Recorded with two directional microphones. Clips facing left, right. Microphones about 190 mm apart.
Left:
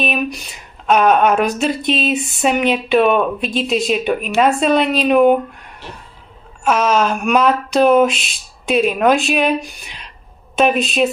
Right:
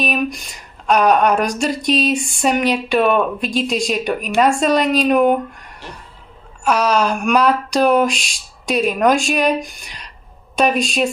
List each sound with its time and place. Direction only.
0.0 s speech: centre (ahead or behind)
1.8 s a sound: 40° right (ahead or behind)
2.7 s speech: centre (ahead or behind)
4.7 s a woman's voice: 45° right (ahead or behind)
5.0 s speech: centre (ahead or behind)
6.6 s speech: 5° left (ahead or behind)